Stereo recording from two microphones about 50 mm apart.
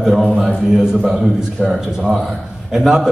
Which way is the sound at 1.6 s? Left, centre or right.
Centre.